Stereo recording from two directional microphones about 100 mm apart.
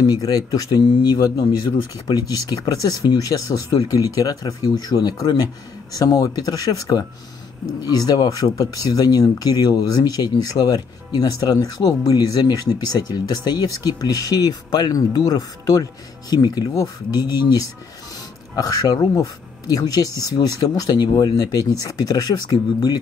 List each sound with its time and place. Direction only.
0.0 s speech: 40° left (ahead or behind)
18.6 s speech: 35° left (ahead or behind)